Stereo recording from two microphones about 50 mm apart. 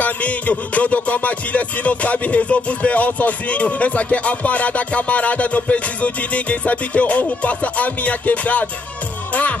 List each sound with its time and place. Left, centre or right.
0.0 s music: left